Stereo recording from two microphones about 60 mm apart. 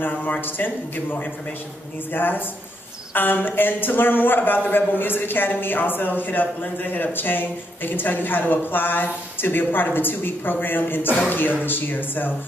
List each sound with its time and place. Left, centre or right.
0.0 s speech: left
2.1 s speech: left